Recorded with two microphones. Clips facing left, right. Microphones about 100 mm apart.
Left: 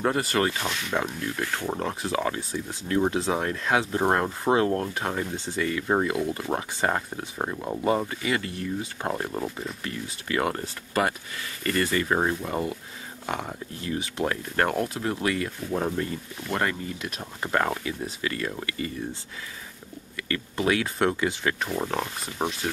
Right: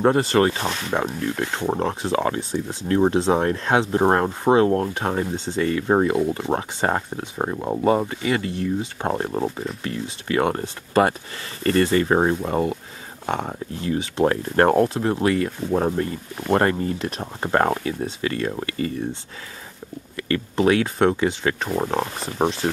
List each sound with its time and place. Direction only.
0.0 s speech: 30° right (ahead or behind)
0.9 s speech: 25° right (ahead or behind)
20.2 s speech: 30° right (ahead or behind)